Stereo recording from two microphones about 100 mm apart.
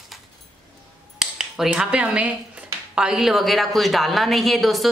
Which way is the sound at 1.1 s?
5° right (ahead or behind).